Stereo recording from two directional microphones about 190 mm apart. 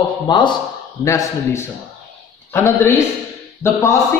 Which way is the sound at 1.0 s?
15° left (ahead or behind).